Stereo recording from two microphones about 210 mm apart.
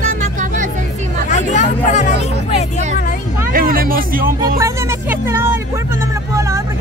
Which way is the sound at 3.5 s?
45° right (ahead or behind).